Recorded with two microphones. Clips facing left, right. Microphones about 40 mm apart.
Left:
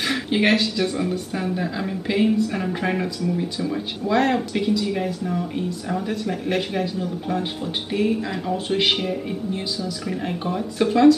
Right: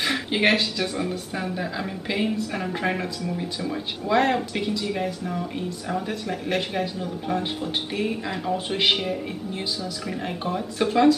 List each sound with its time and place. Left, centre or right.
0.0 s speech: centre